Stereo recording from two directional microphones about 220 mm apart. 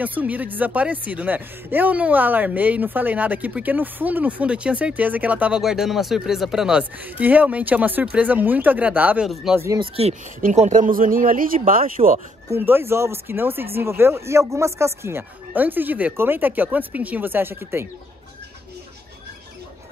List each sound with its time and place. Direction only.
0.0 s speech: 5° right (ahead or behind)
9.7 s speech: 25° right (ahead or behind)
12.4 s speech: 10° right (ahead or behind)